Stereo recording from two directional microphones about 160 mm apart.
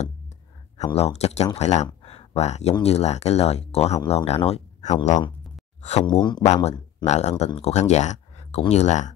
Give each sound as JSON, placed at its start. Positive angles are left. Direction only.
{"t": 0.9, "sound": "speech", "side_deg": 40}
{"t": 1.9, "sound": "a sound", "side_deg": 40}
{"t": 2.8, "sound": "speech", "side_deg": 40}
{"t": 5.8, "sound": "a sound", "side_deg": 45}
{"t": 6.0, "sound": "speech", "side_deg": 30}
{"t": 6.4, "sound": "speech", "side_deg": 45}